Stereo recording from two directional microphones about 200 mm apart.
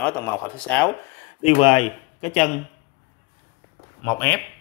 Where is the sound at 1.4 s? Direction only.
30° left (ahead or behind).